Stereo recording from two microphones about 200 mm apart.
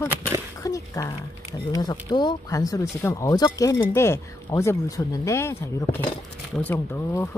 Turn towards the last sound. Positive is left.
turn(degrees=10)  # may be behind; listen again after turning